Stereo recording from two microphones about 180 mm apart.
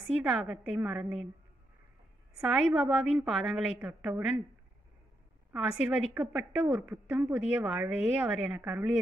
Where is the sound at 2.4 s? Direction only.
5° right (ahead or behind).